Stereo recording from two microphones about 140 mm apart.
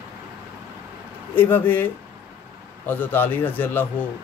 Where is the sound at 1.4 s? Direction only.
15° left (ahead or behind).